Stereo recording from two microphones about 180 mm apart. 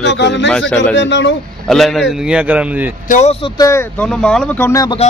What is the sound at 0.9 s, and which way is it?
Speech, 90° left.